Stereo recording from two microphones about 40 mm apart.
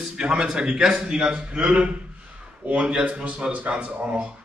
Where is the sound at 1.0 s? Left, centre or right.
Right.